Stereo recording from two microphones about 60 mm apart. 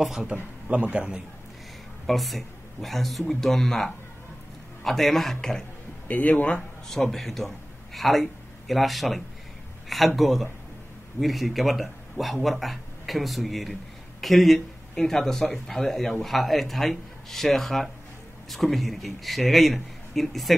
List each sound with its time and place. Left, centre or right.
0.3 s a man's voice: centre
2.0 s speech: centre
6.0 s speech: left
6.9 s a man's voice: centre